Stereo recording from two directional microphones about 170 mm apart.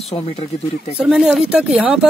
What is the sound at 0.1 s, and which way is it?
Speech, 35° left (ahead or behind).